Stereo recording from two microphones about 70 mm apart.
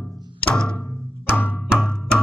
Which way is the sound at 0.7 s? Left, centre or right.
Left.